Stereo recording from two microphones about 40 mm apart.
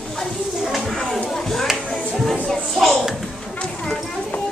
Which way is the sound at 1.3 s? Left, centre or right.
Centre.